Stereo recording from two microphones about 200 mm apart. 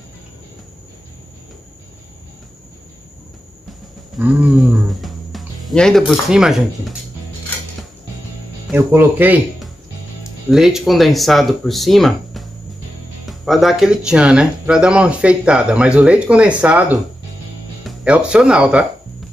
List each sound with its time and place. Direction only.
4.2 s speech: 5° right (ahead or behind)
8.7 s speech: 10° right (ahead or behind)